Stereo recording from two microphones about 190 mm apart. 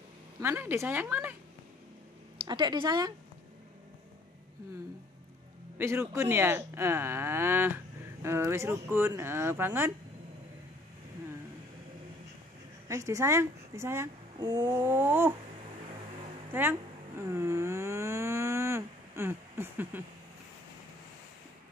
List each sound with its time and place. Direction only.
0.4 s moo: 10° right (ahead or behind)
2.4 s speech: 20° right (ahead or behind)
5.8 s moo: 15° right (ahead or behind)
12.8 s a woman's voice: 15° right (ahead or behind)
14.8 s moo: 10° right (ahead or behind)
16.5 s moo: 10° right (ahead or behind)
17.4 s a sound: 15° right (ahead or behind)